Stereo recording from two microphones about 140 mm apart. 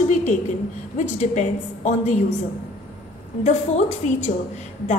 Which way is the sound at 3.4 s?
60° left (ahead or behind).